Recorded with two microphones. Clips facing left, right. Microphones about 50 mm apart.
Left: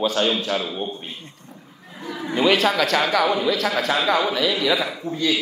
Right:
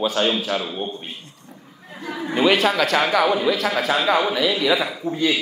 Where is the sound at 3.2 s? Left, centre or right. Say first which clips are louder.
Right 1 dB; right.